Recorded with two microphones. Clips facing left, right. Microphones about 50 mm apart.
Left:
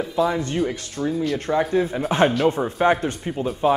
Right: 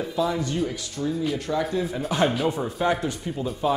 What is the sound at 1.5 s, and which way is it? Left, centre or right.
Speech, left.